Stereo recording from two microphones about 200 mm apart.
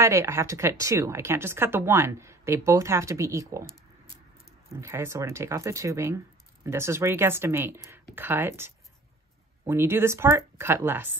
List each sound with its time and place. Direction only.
0.0 s speech: 15° right (ahead or behind)
4.6 s speech: 15° right (ahead or behind)